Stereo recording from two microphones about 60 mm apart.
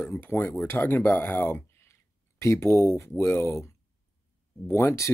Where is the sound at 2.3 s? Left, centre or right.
Left.